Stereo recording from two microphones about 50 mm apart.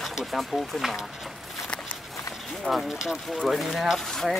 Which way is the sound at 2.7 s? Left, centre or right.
Centre.